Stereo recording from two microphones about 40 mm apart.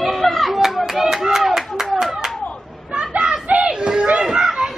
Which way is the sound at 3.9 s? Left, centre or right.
Right.